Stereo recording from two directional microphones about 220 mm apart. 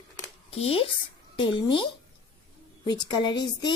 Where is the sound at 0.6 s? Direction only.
25° left (ahead or behind).